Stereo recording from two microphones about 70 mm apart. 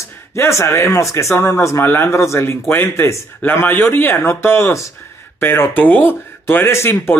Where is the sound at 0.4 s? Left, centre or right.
Left.